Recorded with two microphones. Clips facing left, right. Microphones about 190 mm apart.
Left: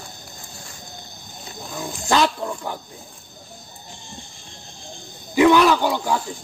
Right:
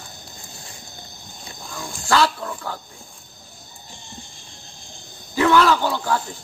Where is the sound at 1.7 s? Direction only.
20° left (ahead or behind).